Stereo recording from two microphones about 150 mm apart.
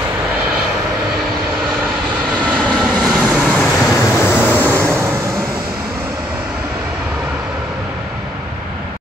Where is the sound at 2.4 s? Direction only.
5° left (ahead or behind).